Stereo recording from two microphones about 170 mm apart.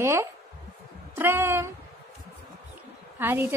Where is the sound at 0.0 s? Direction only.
15° right (ahead or behind).